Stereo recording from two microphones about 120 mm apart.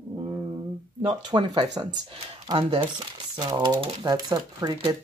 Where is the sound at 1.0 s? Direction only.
40° right (ahead or behind).